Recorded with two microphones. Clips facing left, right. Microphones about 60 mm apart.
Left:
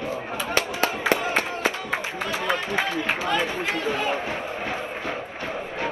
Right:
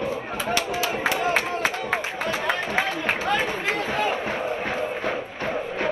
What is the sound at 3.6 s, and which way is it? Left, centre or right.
Chatter, right.